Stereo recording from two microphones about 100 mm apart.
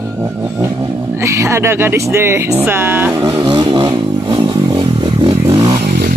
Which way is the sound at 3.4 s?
55° right (ahead or behind).